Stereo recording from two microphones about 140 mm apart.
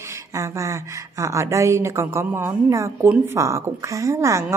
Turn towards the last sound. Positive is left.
turn(degrees=-20)  # may be behind; listen again after turning